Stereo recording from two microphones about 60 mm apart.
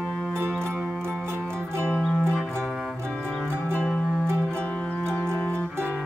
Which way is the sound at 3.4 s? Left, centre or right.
Right.